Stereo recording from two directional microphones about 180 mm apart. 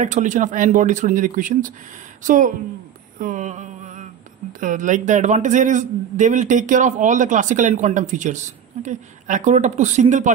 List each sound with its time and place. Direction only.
0.0 s a man's voice: 45° right (ahead or behind)
3.2 s a sound: 45° right (ahead or behind)
4.5 s a man's voice: 45° right (ahead or behind)